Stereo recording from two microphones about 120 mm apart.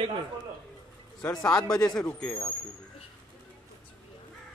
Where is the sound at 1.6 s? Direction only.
5° left (ahead or behind).